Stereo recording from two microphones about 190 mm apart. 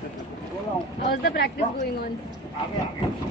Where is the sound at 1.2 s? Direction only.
55° left (ahead or behind).